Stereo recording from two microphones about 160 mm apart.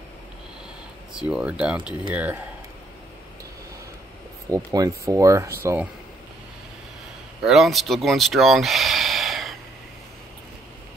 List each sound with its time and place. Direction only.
1.1 s speech: 5° right (ahead or behind)
4.7 s speech: 20° right (ahead or behind)
7.4 s speech: centre (ahead or behind)